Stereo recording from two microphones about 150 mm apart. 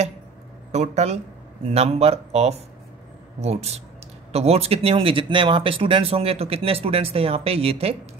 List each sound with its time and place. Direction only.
0.7 s speech: 50° right (ahead or behind)